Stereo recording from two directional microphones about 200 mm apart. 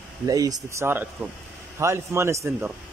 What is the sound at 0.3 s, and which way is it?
Speech, 20° right (ahead or behind).